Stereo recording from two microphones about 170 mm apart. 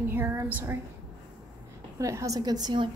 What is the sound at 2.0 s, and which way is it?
Speech, 20° right (ahead or behind).